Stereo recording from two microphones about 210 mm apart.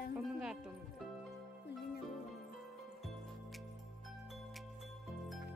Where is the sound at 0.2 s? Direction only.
5° right (ahead or behind).